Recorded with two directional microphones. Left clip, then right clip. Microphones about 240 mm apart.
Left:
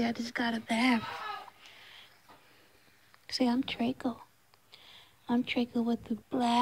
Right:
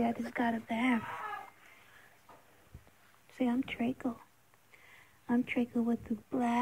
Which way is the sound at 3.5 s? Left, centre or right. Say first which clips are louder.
Left 3 dB; centre.